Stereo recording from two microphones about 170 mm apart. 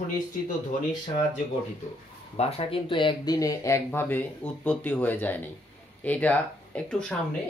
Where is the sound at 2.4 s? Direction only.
35° left (ahead or behind); by 7.1 s 5° left (ahead or behind).